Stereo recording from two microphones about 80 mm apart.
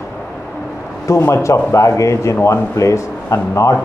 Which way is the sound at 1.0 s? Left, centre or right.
Left.